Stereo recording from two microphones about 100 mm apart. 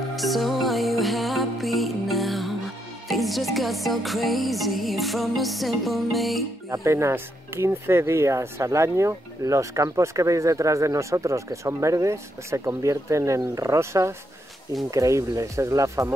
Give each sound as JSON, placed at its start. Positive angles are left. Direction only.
{"t": 0.1, "sound": "music", "side_deg": 0}
{"t": 6.7, "sound": "speech", "side_deg": -30}